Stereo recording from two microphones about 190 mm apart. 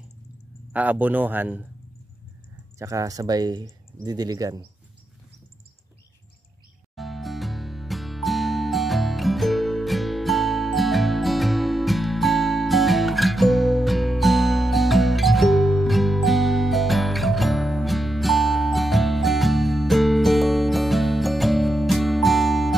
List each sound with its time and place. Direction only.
0.7 s speech: 10° right (ahead or behind)
2.8 s speech: 15° right (ahead or behind)
7.0 s music: centre (ahead or behind)